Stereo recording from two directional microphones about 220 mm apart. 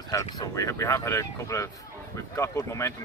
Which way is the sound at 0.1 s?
15° left (ahead or behind).